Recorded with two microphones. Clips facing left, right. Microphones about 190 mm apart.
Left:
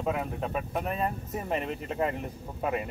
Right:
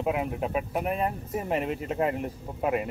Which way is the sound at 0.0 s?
10° right (ahead or behind).